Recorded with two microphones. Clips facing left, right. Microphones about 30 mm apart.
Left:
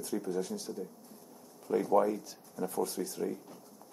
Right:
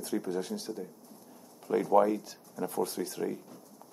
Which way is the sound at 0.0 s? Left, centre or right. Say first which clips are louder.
Right 1 dB; right.